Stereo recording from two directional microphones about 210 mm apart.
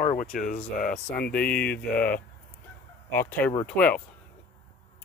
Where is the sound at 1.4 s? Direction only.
5° left (ahead or behind).